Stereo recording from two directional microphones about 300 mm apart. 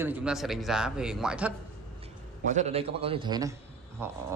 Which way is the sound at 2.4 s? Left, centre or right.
Right.